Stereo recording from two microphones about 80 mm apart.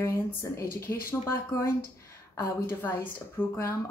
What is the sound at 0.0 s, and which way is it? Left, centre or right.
A woman's voice, left.